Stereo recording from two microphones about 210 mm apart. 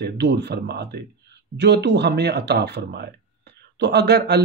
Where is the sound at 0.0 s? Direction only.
55° right (ahead or behind).